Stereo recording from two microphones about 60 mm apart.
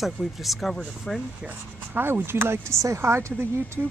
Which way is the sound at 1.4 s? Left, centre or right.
Right.